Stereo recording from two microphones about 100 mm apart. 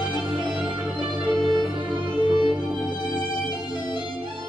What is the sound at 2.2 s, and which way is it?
Music, 50° left (ahead or behind).